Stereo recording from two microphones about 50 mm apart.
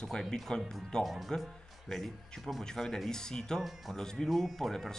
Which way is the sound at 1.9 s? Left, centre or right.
Centre.